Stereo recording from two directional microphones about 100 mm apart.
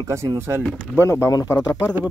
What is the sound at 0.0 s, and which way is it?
Speech, 30° right (ahead or behind).